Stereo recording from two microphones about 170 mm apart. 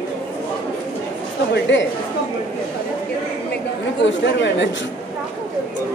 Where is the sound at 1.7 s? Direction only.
90° left.